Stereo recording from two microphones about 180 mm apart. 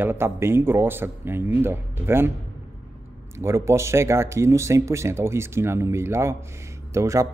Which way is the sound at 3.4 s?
15° right (ahead or behind).